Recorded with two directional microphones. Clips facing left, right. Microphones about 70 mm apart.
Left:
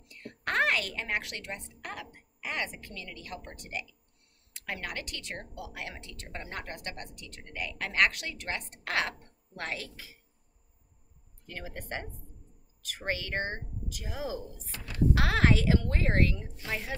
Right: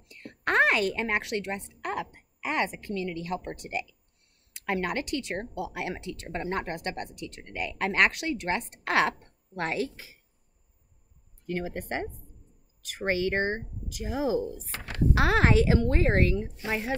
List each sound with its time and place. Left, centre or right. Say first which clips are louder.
0.1 s a woman's voice: right 5 dB; right
11.4 s a woman's voice: right 9 dB; right
14.7 s speech: right 5 dB; right
15.1 s a woman's voice: right 6 dB; right